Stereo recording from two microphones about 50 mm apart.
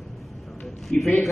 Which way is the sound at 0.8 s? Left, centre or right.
Centre.